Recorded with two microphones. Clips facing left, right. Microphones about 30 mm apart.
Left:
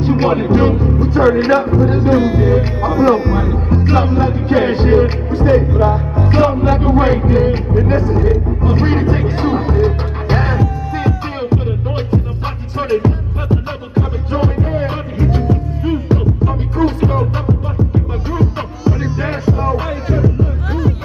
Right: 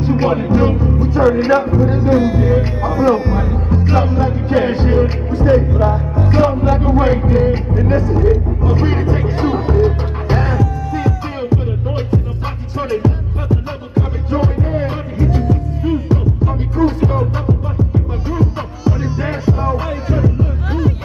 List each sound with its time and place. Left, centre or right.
0.0 s speech: left
8.7 s speech: centre
10.2 s music: left
12.9 s music: centre
18.3 s music: centre